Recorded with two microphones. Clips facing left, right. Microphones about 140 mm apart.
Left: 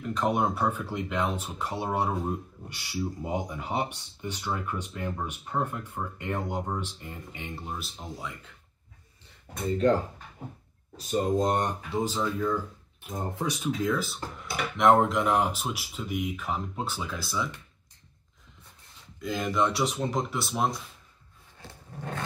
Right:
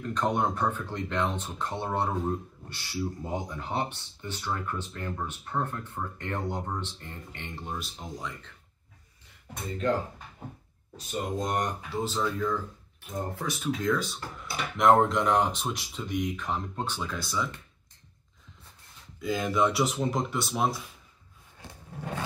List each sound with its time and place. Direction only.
0.0 s speech: 10° left (ahead or behind)
11.0 s speech: 35° left (ahead or behind)
12.0 s speech: 10° left (ahead or behind)
13.8 s speech: 5° left (ahead or behind)
19.2 s speech: centre (ahead or behind)